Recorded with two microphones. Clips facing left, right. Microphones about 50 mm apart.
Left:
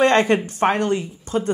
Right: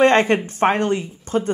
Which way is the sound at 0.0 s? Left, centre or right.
Right.